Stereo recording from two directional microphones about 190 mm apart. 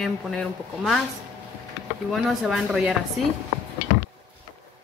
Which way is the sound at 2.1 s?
Centre (ahead or behind).